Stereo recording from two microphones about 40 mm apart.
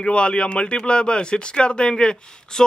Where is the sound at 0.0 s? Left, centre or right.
Left.